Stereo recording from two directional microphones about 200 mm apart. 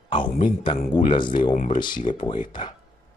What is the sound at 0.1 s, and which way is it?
A man's voice, 25° left (ahead or behind).